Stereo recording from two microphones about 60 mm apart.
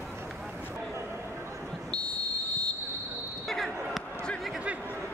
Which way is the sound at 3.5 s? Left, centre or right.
Centre.